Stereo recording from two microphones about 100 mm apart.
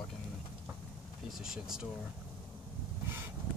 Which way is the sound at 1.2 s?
5° right (ahead or behind).